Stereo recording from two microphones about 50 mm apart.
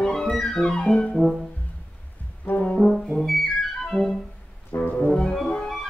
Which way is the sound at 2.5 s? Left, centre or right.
Left.